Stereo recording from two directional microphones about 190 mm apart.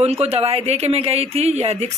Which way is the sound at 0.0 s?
30° right (ahead or behind).